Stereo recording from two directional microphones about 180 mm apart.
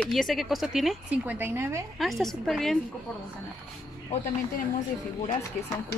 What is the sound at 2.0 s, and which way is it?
Speech, centre (ahead or behind).